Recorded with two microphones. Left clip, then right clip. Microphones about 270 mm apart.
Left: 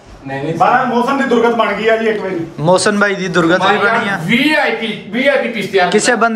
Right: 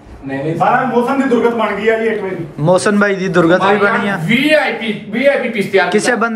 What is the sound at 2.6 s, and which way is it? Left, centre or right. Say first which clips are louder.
A man's voice: even; centre.